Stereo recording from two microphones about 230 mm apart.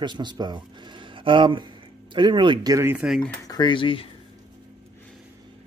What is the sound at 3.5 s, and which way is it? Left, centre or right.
Speech, centre.